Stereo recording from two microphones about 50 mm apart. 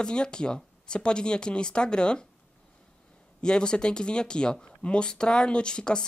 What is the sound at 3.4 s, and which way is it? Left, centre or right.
Speech, centre.